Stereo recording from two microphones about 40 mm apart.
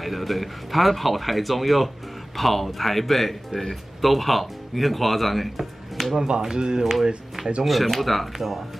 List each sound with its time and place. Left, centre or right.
0.0 s speech: centre
6.1 s speech: right; by 8.6 s centre